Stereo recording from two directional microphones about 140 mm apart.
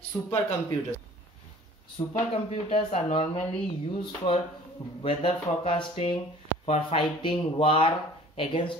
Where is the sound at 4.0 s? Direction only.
35° left (ahead or behind).